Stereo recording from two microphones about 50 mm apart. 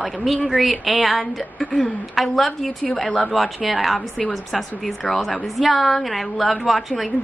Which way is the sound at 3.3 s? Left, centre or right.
Centre.